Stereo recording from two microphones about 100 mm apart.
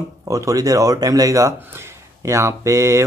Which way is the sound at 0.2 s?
35° right (ahead or behind).